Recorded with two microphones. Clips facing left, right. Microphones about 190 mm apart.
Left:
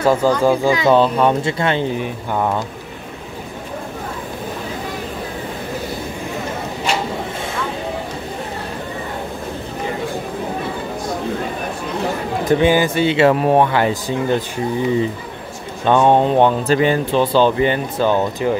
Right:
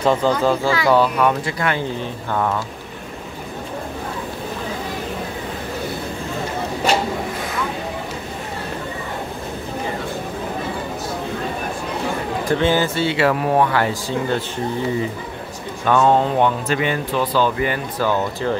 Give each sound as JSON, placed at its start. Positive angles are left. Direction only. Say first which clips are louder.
{"t": 0.0, "sound": "speech", "louder": "left 3 dB", "side_deg": 5}
{"t": 12.4, "sound": "speech", "louder": "left 4 dB", "side_deg": 15}
{"t": 16.4, "sound": "speech", "louder": "left 5 dB", "side_deg": 35}